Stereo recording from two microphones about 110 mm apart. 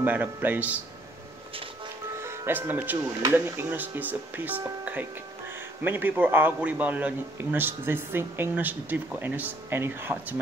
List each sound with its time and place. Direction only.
0.0 s a man's voice: 15° right (ahead or behind)
2.1 s a man's voice: 20° right (ahead or behind)